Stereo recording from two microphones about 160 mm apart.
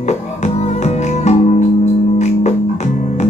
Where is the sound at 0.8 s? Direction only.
45° left (ahead or behind).